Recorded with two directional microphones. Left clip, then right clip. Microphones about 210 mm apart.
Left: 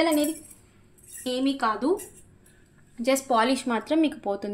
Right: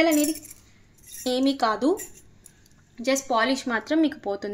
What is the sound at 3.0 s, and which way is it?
Speech, centre (ahead or behind).